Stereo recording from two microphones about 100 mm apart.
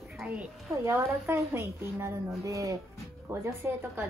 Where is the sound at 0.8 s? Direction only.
25° right (ahead or behind).